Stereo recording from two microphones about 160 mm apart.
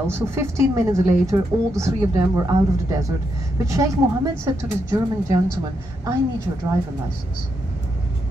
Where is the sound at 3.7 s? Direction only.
20° right (ahead or behind).